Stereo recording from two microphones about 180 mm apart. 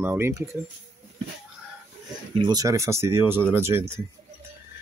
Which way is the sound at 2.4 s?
20° right (ahead or behind).